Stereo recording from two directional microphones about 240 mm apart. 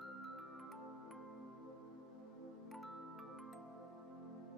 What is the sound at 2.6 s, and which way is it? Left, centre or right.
Music, centre.